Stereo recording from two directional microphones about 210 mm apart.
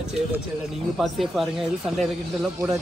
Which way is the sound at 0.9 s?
Centre (ahead or behind).